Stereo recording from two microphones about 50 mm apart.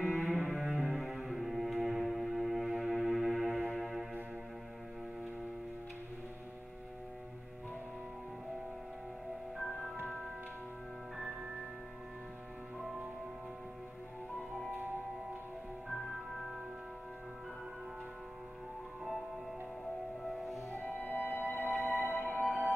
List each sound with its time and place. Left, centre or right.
0.0 s cello: centre
3.8 s music: centre
15.9 s music: centre
20.2 s music: centre
20.7 s music: left
22.4 s music: centre